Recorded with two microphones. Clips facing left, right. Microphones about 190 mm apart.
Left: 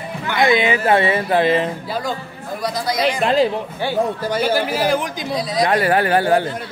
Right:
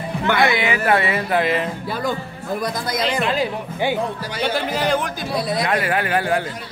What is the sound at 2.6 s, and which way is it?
Speech, 55° right (ahead or behind).